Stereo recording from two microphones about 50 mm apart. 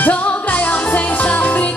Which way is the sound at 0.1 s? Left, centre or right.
Left.